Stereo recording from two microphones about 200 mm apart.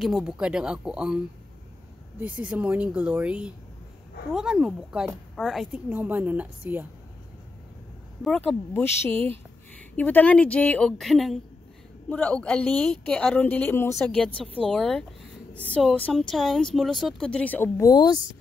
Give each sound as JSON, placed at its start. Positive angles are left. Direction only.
{"t": 0.0, "sound": "speech", "side_deg": 0}
{"t": 8.2, "sound": "speech", "side_deg": 5}